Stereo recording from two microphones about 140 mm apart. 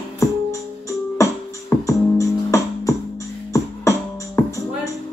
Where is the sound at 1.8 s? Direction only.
20° left (ahead or behind).